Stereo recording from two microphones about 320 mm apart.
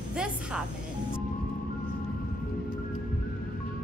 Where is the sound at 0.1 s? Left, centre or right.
Centre.